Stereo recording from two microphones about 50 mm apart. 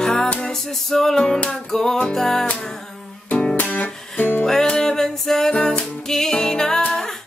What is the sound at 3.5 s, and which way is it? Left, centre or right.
Music, left.